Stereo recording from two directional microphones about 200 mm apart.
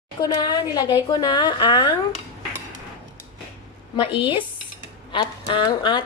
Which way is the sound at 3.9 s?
25° left (ahead or behind).